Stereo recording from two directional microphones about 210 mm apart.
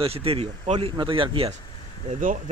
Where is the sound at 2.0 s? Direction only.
35° right (ahead or behind).